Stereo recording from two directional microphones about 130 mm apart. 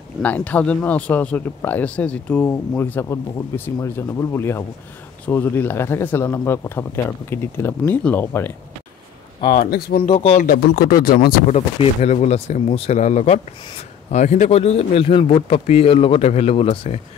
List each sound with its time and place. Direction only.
0.2 s speech: 10° left (ahead or behind)
10.0 s speech: 55° left (ahead or behind)
10.6 s speech: 90° left
11.8 s a man's voice: 55° left (ahead or behind)